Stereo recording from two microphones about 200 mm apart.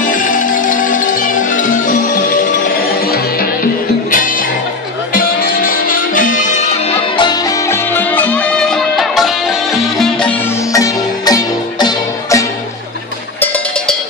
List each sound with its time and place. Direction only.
0.0 s music: 40° left (ahead or behind)
4.1 s music: 45° left (ahead or behind)
7.2 s music: 20° left (ahead or behind); by 10.3 s centre (ahead or behind)
10.7 s music: 15° left (ahead or behind)
13.4 s cowbell: 10° left (ahead or behind)